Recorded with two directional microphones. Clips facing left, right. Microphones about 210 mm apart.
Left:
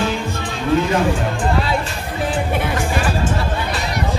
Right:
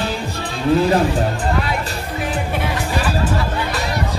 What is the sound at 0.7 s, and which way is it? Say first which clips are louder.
Speech: right 2 dB; 35° right (ahead or behind).